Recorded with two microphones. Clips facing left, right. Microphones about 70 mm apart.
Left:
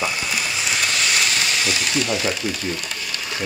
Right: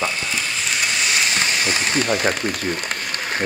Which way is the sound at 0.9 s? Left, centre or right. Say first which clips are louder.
Right 1 dB; centre.